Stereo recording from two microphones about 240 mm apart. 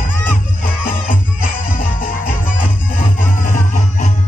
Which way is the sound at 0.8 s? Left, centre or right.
Left.